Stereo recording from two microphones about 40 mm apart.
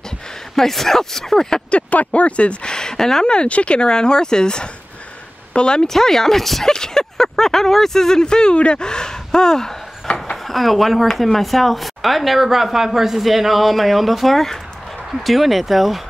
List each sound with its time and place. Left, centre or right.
0.6 s speech: centre
1.9 s speech: left
5.9 s speech: centre
10.3 s speech: centre